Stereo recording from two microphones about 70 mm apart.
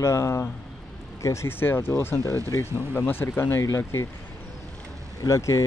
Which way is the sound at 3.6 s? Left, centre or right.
Left.